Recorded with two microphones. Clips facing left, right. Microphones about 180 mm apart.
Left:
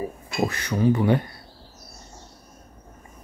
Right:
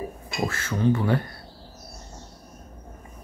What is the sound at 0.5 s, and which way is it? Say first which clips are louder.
Speech: even; 15° left (ahead or behind).